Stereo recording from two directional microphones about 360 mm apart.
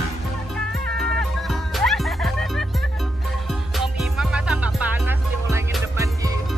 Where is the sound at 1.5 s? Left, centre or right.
Centre.